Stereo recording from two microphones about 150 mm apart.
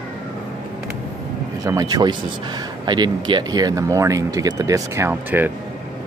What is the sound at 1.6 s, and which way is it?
Speech, 25° right (ahead or behind).